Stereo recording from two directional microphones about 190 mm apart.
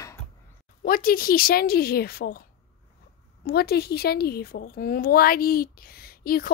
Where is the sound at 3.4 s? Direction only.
55° left (ahead or behind).